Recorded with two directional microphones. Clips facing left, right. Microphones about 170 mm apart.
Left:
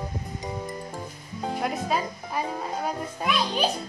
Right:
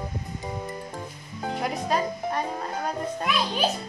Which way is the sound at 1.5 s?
Centre (ahead or behind).